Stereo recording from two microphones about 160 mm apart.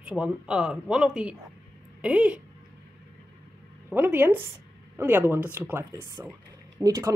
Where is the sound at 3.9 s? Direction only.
10° right (ahead or behind).